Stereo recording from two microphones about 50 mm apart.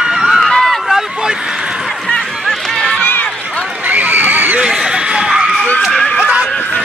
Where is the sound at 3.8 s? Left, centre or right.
Right.